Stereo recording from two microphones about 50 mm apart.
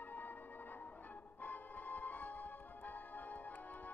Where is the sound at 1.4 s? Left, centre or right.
Left.